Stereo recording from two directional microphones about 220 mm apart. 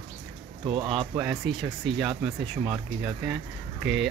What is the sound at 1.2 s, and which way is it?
Speech, centre (ahead or behind).